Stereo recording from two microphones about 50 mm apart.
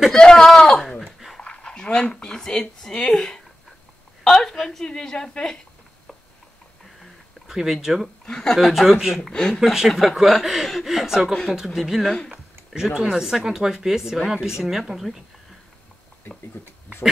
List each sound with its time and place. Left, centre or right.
0.2 s a woman's voice: centre
0.8 s a sound: centre
1.4 s a woman's voice: centre
7.0 s a sound: centre
8.3 s a woman's voice: centre
8.5 s speech: centre
9.3 s a woman's voice: centre
9.6 s speech: centre
12.3 s speech: centre
16.6 s speech: left